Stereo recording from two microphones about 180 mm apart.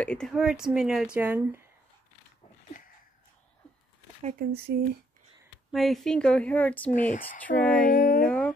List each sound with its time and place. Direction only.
0.0 s speech: 5° left (ahead or behind); by 1.7 s 15° right (ahead or behind)
4.2 s speech: 40° right (ahead or behind)
4.7 s speech: 60° right (ahead or behind)
5.7 s speech: centre (ahead or behind)
6.9 s speech: 45° left (ahead or behind)
7.4 s speech: 5° left (ahead or behind)
7.8 s speech: 50° left (ahead or behind)
8.3 s music: 5° left (ahead or behind)